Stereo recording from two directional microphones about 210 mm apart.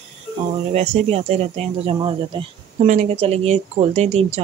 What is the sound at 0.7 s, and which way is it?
Speech, 30° right (ahead or behind).